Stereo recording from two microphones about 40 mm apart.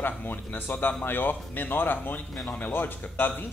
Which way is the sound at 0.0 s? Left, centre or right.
Left.